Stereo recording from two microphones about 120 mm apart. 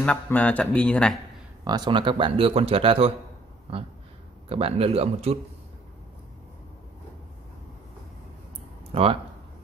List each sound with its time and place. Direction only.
0.0 s speech: 10° left (ahead or behind)
1.6 s speech: 40° right (ahead or behind)
4.5 s speech: 55° right (ahead or behind)
8.9 s speech: 55° right (ahead or behind)